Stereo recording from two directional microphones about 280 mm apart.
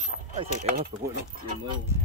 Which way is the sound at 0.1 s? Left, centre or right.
Left.